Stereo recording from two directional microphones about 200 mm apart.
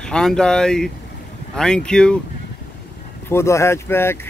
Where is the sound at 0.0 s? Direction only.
5° left (ahead or behind).